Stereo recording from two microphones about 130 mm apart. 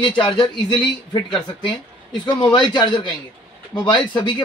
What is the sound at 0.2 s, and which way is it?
Speech, 35° left (ahead or behind).